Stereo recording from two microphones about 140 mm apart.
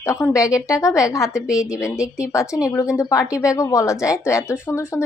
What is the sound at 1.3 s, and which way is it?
Speech, 5° right (ahead or behind).